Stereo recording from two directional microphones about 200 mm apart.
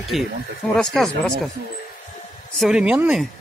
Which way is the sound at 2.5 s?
5° right (ahead or behind).